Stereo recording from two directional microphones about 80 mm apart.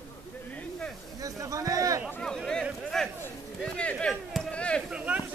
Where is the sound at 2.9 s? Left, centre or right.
Centre.